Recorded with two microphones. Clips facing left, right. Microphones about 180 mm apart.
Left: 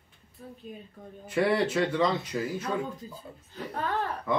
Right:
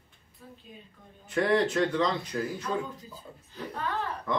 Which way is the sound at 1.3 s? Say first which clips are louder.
Even; 5° left (ahead or behind).